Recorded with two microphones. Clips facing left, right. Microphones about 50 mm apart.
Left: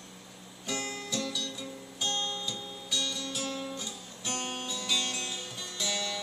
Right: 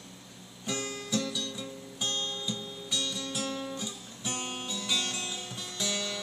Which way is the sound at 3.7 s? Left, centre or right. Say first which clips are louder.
Right 2 dB; centre.